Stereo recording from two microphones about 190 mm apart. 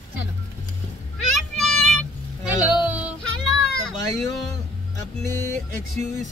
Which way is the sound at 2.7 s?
5° right (ahead or behind).